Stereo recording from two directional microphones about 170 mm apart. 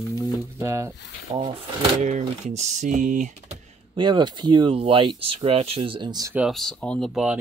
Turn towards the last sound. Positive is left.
turn(degrees=-5)  # may be behind; listen again after turning